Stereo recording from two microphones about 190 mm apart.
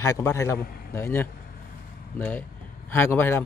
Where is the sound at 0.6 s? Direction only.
50° left (ahead or behind).